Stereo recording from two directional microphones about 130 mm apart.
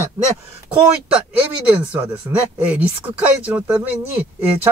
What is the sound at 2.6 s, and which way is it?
Speech, 10° right (ahead or behind).